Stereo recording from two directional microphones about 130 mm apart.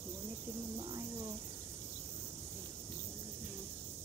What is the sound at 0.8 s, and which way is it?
Speech, 30° right (ahead or behind).